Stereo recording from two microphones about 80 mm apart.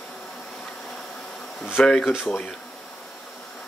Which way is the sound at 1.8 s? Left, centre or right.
Centre.